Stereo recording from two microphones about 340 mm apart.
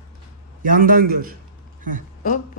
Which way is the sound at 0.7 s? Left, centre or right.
Right.